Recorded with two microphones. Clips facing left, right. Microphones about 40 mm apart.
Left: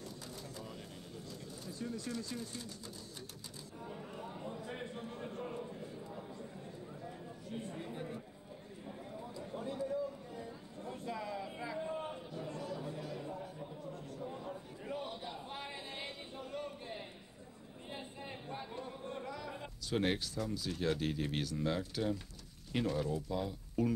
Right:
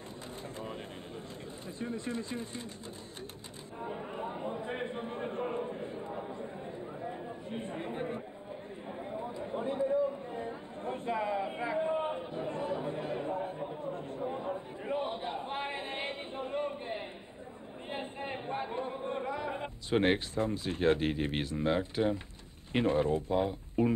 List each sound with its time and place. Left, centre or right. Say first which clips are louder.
1.8 s speech: right 5 dB; right
3.8 s a sound: right 9 dB; right
7.0 s chatter: right 8 dB; right
8.8 s a sound: right 8 dB; right
17.8 s chatter: right 8 dB; right
22.7 s speech: right 7 dB; right